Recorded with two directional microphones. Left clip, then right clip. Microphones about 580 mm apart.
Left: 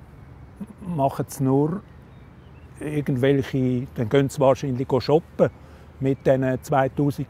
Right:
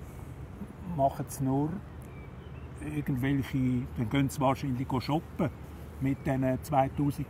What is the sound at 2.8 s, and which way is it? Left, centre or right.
Speech, centre.